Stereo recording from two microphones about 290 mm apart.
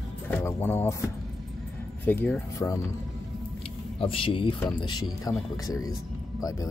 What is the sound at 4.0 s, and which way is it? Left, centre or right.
Speech, centre.